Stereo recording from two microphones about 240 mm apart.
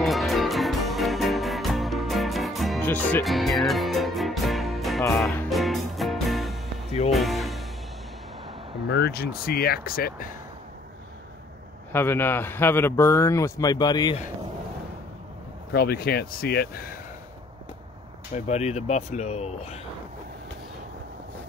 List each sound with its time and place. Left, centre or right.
0.0 s music: centre
8.8 s speech: left
11.9 s a man's voice: centre
15.7 s speech: left
18.3 s speech: left